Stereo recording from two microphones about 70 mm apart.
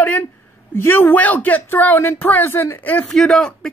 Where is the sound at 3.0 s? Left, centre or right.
Centre.